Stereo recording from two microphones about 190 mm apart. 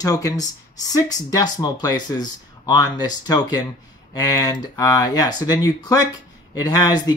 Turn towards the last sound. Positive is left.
turn(degrees=20)  # may be behind; listen again after turning